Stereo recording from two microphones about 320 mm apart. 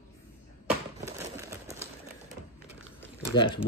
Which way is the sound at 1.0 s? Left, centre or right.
Centre.